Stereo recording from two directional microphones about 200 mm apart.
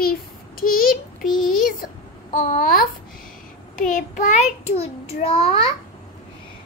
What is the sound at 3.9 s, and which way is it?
Child singing, 40° left (ahead or behind).